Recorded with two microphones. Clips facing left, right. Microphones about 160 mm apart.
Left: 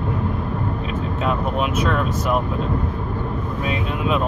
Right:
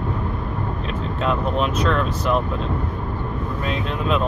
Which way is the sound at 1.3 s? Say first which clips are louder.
Right 1 dB; 10° left (ahead or behind).